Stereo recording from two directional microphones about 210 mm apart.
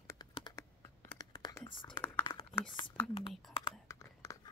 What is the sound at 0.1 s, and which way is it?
Computer keyboard, 20° left (ahead or behind).